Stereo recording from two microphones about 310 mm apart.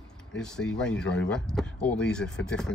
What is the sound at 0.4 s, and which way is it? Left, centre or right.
Speech, centre.